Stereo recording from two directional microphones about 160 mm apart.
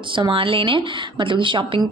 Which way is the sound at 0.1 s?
30° right (ahead or behind).